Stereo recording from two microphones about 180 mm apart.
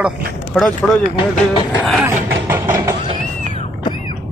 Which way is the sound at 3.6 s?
30° left (ahead or behind).